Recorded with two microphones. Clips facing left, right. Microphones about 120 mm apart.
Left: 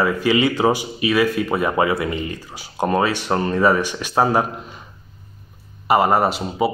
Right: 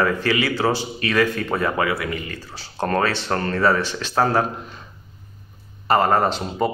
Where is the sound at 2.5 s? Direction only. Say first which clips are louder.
Left 2 dB; 15° left (ahead or behind).